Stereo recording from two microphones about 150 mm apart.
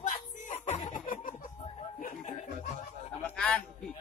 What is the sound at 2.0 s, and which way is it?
Chuckle, 55° left (ahead or behind).